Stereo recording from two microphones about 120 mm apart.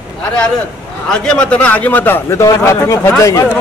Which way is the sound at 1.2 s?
10° left (ahead or behind).